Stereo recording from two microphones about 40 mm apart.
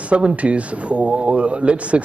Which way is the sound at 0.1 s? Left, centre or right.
Right.